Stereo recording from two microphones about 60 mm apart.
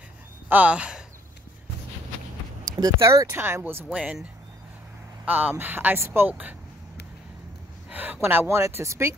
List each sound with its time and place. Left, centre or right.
0.5 s speech: right
2.6 s speech: right
3.3 s speech: right
3.9 s speech: centre
5.2 s speech: right
7.9 s a sound: right
8.2 s speech: right